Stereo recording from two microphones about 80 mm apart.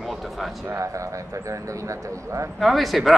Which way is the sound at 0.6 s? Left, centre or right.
Right.